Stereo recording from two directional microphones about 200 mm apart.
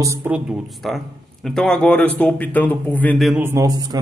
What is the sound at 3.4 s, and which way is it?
Speech, 15° right (ahead or behind).